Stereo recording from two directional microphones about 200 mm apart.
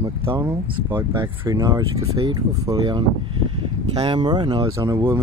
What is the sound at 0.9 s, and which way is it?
Speech, 25° right (ahead or behind).